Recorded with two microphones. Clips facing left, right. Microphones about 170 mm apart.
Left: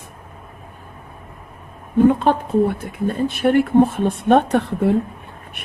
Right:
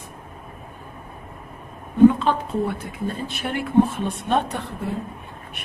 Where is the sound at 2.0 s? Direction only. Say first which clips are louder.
Right 1 dB; 55° left (ahead or behind).